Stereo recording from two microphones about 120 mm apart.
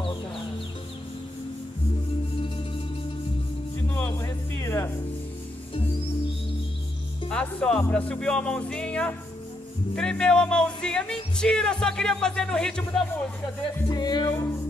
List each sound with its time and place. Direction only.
4.1 s music: 35° left (ahead or behind)
4.6 s music: 20° left (ahead or behind)
7.2 s music: 10° left (ahead or behind)
9.9 s speech: 5° left (ahead or behind)
13.8 s speech: 35° left (ahead or behind)